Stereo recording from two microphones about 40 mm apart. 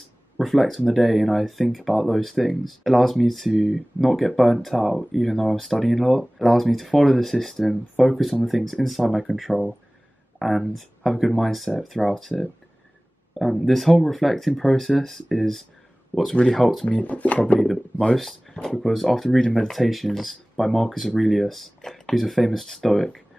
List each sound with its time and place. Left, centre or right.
0.4 s speech: centre
16.3 s speech: centre
16.8 s speech: left
18.6 s speech: centre